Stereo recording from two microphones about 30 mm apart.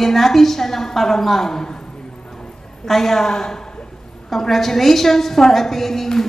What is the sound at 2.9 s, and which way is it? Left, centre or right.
A woman's voice, centre.